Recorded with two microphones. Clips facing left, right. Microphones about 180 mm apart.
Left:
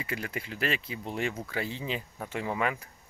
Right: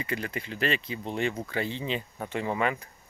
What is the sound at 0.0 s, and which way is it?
Speech, 5° left (ahead or behind).